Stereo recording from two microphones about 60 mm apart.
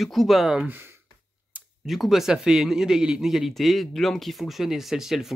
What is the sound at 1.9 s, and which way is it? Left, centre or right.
Speech, centre.